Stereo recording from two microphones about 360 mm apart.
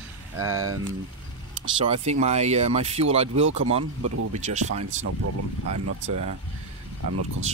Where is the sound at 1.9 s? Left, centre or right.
Centre.